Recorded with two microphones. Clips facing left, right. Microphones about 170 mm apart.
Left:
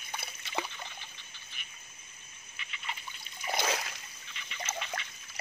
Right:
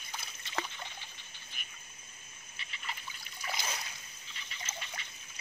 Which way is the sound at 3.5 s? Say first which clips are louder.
Left 9 dB; 85° left.